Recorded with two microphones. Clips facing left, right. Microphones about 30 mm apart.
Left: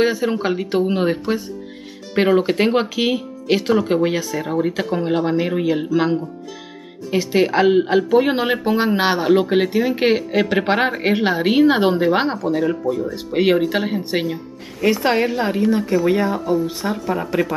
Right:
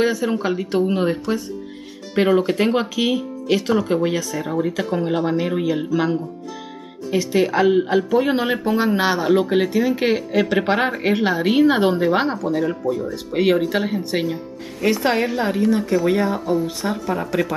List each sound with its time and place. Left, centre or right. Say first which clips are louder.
0.0 s speech: left 1 dB; centre
7.1 s speech: left 1 dB; centre
13.1 s speech: left 1 dB; centre